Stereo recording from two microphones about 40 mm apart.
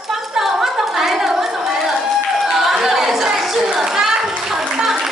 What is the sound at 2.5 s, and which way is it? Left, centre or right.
Children playing, centre.